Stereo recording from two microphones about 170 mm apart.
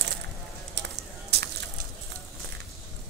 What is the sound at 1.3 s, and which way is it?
Crushing, 75° right (ahead or behind).